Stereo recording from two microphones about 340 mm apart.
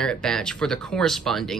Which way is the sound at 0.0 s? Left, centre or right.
Centre.